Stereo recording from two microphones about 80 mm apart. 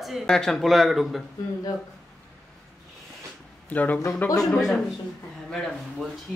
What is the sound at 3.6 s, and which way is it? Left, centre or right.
Speech, centre.